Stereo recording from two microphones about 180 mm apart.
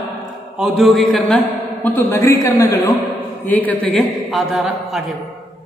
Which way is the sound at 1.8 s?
10° left (ahead or behind).